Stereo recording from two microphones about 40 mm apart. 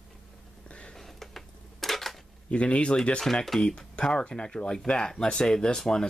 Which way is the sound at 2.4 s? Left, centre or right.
Left.